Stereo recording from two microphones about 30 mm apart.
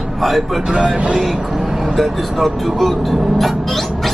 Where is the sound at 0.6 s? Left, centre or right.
Right.